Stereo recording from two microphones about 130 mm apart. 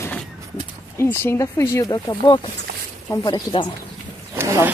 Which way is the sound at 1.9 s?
35° left (ahead or behind).